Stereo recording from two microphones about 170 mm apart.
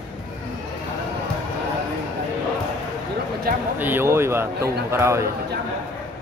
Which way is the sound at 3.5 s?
60° right (ahead or behind).